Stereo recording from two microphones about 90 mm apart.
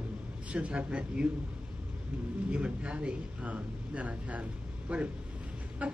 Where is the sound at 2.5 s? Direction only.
10° right (ahead or behind).